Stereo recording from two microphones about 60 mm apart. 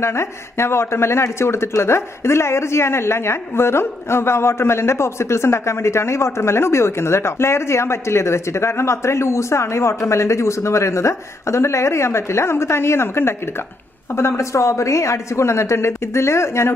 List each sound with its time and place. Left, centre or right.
0.0 s speech: left